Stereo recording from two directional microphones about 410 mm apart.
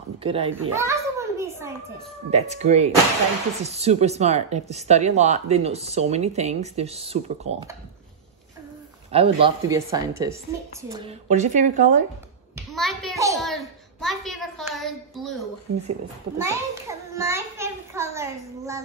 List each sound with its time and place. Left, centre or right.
0.2 s a child's voice: centre
9.1 s speech: centre
12.5 s a sound: centre
16.3 s a child's voice: centre